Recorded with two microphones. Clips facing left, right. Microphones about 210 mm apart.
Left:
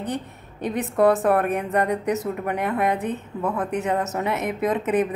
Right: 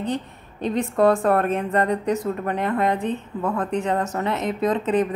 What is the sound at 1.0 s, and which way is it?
Speech, 15° left (ahead or behind).